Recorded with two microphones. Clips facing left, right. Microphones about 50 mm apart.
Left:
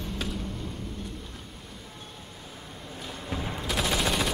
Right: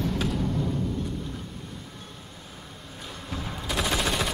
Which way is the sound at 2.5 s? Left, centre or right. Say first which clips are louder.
Left 1 dB; centre.